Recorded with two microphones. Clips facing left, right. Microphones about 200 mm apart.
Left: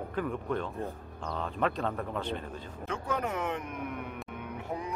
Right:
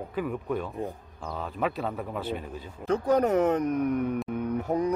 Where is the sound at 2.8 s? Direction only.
40° right (ahead or behind).